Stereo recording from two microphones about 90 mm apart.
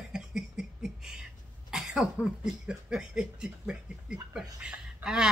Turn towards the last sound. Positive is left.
turn(degrees=-10)  # may be behind; listen again after turning